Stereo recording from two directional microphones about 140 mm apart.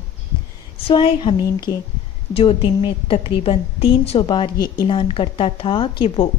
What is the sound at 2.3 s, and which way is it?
A woman's voice, 40° left (ahead or behind).